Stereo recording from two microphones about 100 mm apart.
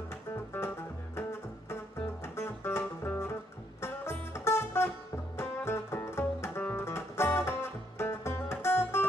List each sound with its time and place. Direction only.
1.1 s music: 25° left (ahead or behind)